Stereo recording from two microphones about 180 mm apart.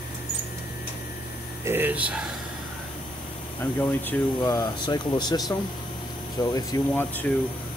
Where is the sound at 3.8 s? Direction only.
15° left (ahead or behind).